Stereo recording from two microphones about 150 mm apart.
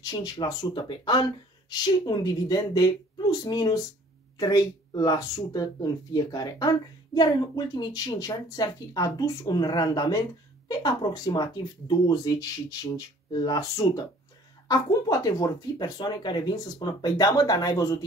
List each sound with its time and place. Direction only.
0.0 s speech: 25° left (ahead or behind)